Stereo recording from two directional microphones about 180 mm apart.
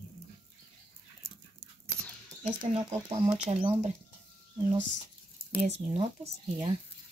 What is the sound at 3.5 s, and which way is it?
Speech, 35° right (ahead or behind).